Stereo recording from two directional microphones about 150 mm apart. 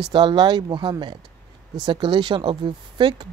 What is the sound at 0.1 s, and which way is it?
Speech, 30° right (ahead or behind).